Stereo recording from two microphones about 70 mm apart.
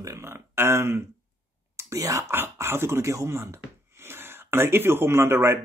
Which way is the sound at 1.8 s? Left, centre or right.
Right.